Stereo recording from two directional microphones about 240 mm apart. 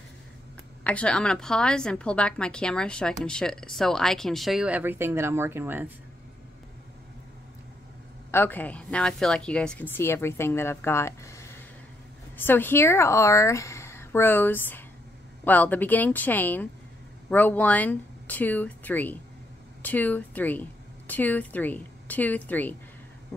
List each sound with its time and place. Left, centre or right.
0.8 s a woman's voice: centre
8.3 s a woman's voice: centre